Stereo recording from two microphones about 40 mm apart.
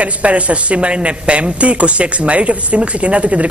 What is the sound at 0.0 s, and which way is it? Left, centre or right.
Speech, right.